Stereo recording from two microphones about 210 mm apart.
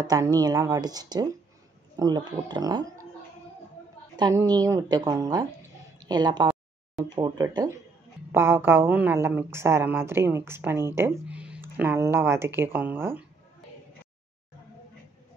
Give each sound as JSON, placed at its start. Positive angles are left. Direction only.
{"t": 0.0, "sound": "speech", "side_deg": -15}
{"t": 4.2, "sound": "a woman's voice", "side_deg": -15}